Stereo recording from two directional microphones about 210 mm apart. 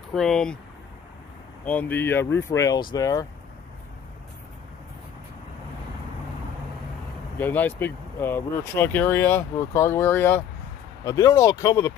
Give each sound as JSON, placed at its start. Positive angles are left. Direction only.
{"t": 0.1, "sound": "speech", "side_deg": 0}
{"t": 1.6, "sound": "speech", "side_deg": 5}
{"t": 7.3, "sound": "speech", "side_deg": 10}